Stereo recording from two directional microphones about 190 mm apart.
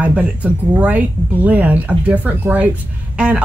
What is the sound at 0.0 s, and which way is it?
Speech, 5° right (ahead or behind).